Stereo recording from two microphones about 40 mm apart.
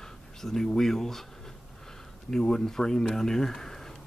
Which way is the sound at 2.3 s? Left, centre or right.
Centre.